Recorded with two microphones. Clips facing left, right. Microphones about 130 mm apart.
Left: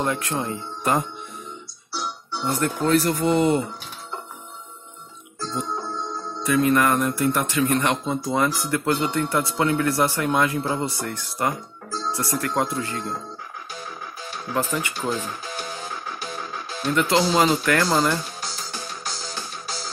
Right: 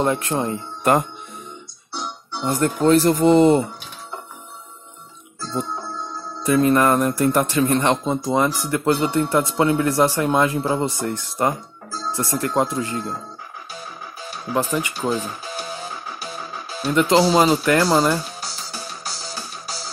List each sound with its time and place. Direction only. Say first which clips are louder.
0.0 s speech: right 4 dB; 20° right (ahead or behind)
0.5 s speech: right 6 dB; 65° right (ahead or behind)
1.9 s speech: even; 20° right (ahead or behind)
6.4 s speech: right 3 dB; 35° right (ahead or behind)
8.2 s speech: right 3 dB; 15° right (ahead or behind)
13.7 s music: right 1 dB; 15° right (ahead or behind)